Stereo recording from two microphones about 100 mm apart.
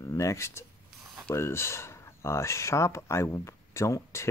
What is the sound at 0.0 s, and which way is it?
Speech, 30° left (ahead or behind).